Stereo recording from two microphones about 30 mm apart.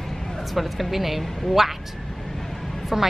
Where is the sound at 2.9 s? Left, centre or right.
Centre.